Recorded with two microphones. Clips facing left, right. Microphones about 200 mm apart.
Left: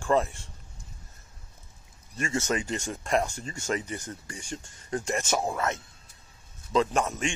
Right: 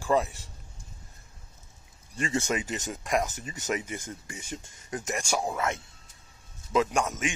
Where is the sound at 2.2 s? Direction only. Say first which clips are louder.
Even; 15° right (ahead or behind).